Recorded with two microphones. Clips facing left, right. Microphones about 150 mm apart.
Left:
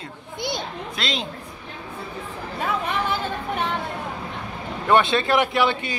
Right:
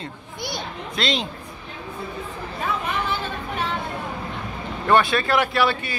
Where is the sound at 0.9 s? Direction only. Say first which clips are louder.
Right 5 dB; centre (ahead or behind).